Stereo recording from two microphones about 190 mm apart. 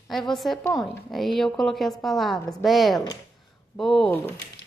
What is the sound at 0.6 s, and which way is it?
Speech, 20° left (ahead or behind).